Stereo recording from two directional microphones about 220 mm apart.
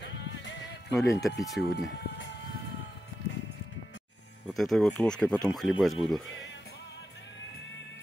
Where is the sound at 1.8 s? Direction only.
55° left (ahead or behind).